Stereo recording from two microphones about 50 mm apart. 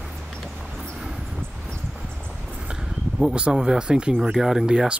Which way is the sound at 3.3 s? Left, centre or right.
Centre.